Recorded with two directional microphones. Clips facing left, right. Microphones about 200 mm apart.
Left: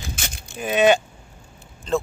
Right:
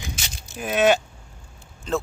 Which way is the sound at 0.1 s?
55° left (ahead or behind).